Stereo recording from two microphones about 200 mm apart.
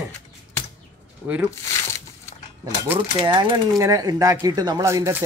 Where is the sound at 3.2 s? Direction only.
20° right (ahead or behind).